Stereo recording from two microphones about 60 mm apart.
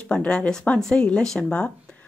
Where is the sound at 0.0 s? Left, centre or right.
Centre.